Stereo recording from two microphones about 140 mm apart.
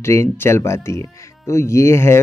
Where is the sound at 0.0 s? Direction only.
20° left (ahead or behind).